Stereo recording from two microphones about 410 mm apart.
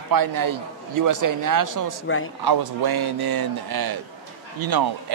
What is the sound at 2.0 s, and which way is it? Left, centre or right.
Speech, left.